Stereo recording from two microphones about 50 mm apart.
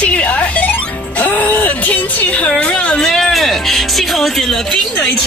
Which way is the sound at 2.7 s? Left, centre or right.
Centre.